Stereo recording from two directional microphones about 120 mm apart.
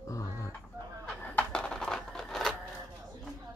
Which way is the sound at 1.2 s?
10° left (ahead or behind).